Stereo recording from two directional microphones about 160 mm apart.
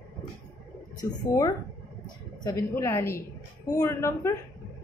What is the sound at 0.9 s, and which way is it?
A woman's voice, 25° left (ahead or behind).